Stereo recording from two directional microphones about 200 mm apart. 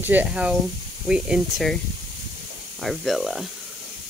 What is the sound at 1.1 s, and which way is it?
Speech, 5° right (ahead or behind).